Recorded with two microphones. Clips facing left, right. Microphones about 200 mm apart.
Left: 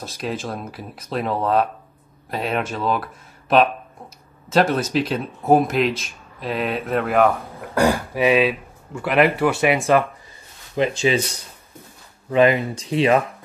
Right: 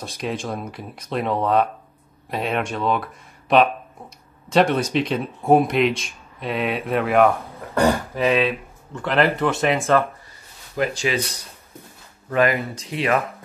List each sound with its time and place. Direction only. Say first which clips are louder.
0.0 s speech: even; centre (ahead or behind)
10.8 s speech: left 3 dB; 25° left (ahead or behind)
12.3 s speech: left 4 dB; 20° left (ahead or behind)